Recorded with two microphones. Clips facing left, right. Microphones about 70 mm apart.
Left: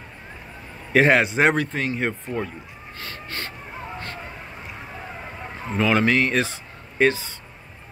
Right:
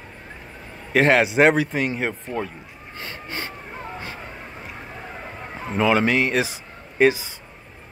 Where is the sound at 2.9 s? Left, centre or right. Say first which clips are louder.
Right 2 dB; right.